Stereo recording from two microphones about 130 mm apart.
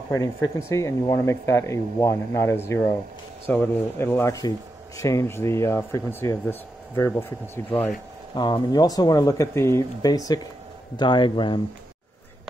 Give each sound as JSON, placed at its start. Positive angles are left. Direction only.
{"t": 0.1, "sound": "speech", "side_deg": 25}
{"t": 8.4, "sound": "a man's voice", "side_deg": 35}